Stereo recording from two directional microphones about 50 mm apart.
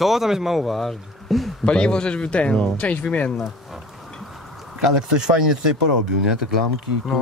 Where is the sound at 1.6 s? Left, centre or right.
Centre.